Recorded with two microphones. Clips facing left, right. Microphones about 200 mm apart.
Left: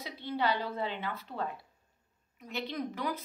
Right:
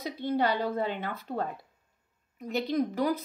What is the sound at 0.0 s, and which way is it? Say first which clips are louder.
A woman's voice: right 5 dB; 45° right (ahead or behind).